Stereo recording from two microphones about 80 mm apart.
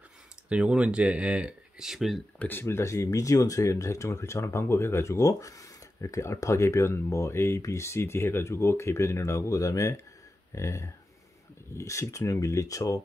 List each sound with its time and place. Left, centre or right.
0.5 s speech: centre
2.3 s speech: left
2.6 s speech: left